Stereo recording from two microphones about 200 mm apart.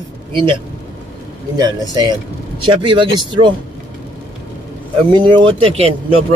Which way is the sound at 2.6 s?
25° right (ahead or behind).